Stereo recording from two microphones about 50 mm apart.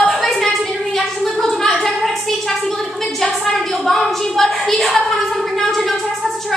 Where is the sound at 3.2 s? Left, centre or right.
Centre.